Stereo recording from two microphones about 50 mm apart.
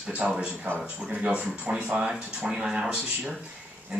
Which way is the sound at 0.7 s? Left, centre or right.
Right.